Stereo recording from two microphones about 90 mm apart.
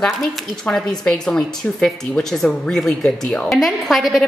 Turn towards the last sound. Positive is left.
turn(degrees=0)  # may be behind; listen again after turning